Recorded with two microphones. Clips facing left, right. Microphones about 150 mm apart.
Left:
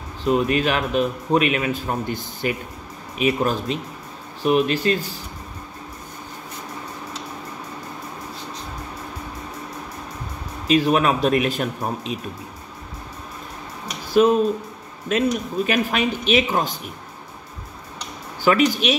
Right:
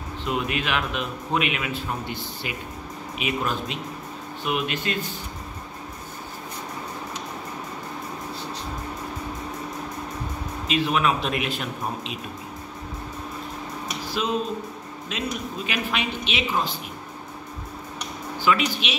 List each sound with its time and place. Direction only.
0.2 s a man's voice: 40° left (ahead or behind)
10.7 s speech: 40° left (ahead or behind)
14.2 s speech: 50° left (ahead or behind)
18.4 s speech: 45° left (ahead or behind)